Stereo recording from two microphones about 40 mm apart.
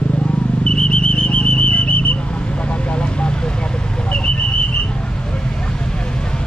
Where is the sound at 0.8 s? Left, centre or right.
Left.